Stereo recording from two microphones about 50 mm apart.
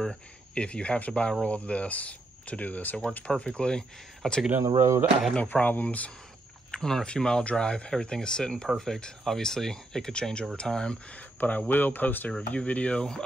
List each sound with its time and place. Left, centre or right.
0.0 s speech: centre; by 3.0 s left
3.3 s speech: centre
4.7 s speech: right
5.3 s speech: left
6.7 s speech: centre
11.1 s speech: left
12.3 s speech: left